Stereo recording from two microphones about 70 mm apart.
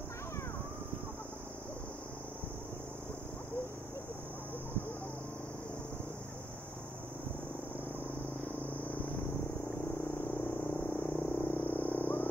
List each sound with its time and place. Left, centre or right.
10.1 s vehicle: left